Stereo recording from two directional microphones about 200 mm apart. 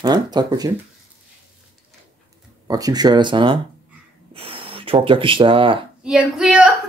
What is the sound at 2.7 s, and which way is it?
Speech, 20° right (ahead or behind).